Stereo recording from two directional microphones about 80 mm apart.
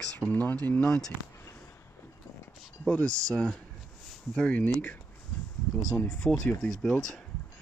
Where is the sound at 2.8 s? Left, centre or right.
Centre.